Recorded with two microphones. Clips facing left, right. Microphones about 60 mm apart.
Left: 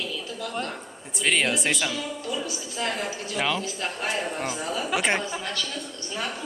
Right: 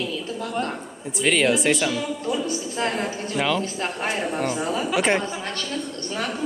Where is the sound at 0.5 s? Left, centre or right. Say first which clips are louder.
Right 5 dB; right.